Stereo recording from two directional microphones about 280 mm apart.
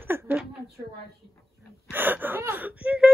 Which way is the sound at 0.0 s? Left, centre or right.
Centre.